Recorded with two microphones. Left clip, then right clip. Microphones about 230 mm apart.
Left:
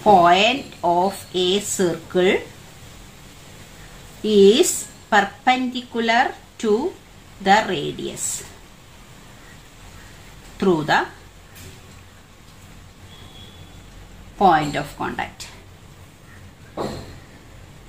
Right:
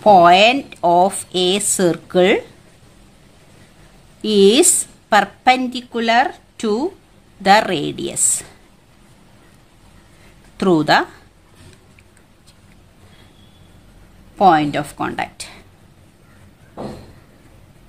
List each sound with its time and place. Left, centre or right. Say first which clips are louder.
0.0 s speech: right 4 dB; right
4.2 s a woman's voice: right 1 dB; right
10.6 s speech: right 4 dB; right
14.4 s speech: right 3 dB; right